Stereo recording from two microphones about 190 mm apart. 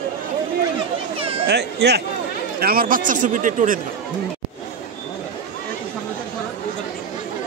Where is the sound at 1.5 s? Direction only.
60° right (ahead or behind); by 3.8 s 45° right (ahead or behind).